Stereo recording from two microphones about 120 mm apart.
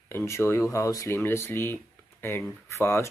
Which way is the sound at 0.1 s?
20° left (ahead or behind).